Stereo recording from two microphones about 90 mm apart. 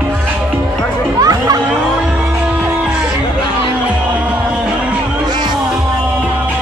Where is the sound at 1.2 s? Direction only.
45° right (ahead or behind).